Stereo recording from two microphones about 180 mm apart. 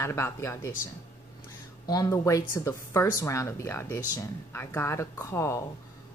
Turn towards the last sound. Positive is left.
turn(degrees=15)  # may be behind; listen again after turning